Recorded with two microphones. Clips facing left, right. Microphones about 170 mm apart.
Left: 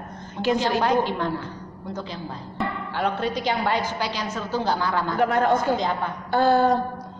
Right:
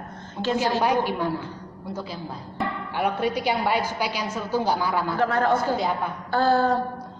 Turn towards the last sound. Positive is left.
turn(degrees=15)  # may be behind; listen again after turning